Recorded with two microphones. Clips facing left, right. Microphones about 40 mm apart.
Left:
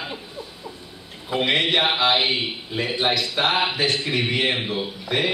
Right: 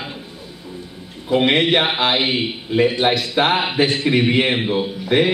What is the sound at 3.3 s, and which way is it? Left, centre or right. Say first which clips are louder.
Speech: right 4 dB; centre.